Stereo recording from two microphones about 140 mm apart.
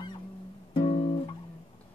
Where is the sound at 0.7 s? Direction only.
40° left (ahead or behind).